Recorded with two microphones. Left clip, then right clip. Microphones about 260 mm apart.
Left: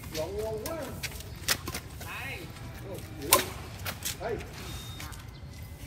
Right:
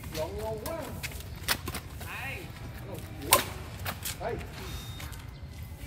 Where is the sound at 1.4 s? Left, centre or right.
Right.